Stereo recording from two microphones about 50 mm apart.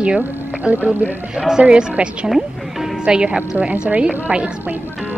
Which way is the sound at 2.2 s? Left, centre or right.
Centre.